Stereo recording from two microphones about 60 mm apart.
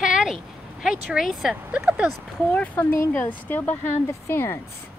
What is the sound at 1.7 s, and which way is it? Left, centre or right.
Speech, right.